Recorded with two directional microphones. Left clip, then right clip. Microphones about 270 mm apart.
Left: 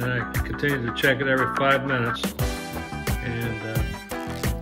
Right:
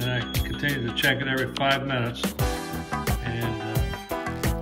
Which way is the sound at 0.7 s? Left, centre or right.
Centre.